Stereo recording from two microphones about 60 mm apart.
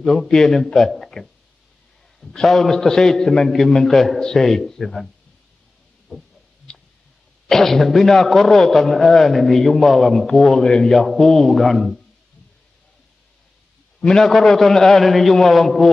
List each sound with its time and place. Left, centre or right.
0.0 s a man's voice: centre
2.3 s a man's voice: centre
7.4 s a man's voice: centre
13.9 s a man's voice: centre